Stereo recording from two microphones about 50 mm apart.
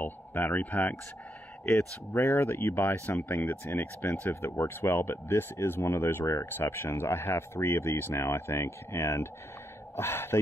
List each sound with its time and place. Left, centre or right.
0.0 s speech: left
2.1 s speech: left
3.8 s speech: left
4.3 s speech: left
6.7 s speech: left
9.9 s speech: left